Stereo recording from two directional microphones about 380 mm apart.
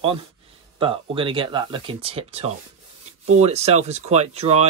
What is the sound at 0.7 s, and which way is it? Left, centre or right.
Speech, centre.